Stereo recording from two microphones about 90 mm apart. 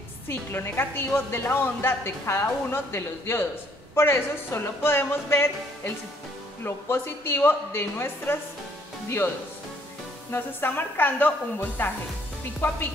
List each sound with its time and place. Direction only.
0.3 s a woman's voice: 25° left (ahead or behind)
6.6 s a woman's voice: 25° left (ahead or behind)
10.3 s a woman's voice: 25° left (ahead or behind)